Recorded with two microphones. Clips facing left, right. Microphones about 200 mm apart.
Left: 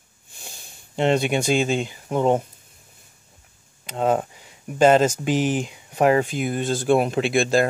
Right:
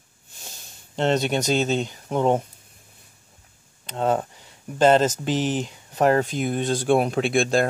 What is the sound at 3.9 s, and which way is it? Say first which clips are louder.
Speech: left 2 dB; 10° left (ahead or behind).